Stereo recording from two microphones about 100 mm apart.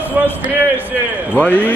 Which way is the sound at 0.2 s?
15° right (ahead or behind).